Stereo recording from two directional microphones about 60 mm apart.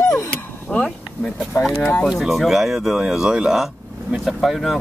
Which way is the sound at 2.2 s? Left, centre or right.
Centre.